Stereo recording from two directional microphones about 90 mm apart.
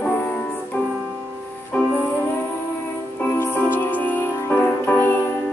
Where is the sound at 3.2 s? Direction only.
20° left (ahead or behind).